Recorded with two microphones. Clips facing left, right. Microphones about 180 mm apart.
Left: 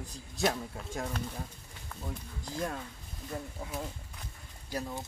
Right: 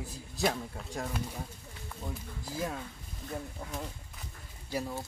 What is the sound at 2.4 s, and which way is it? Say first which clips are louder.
Speech: even; 5° right (ahead or behind).